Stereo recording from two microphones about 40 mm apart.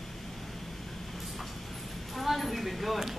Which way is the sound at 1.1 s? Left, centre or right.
Centre.